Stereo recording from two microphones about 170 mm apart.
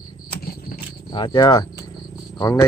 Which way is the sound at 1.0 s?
25° left (ahead or behind).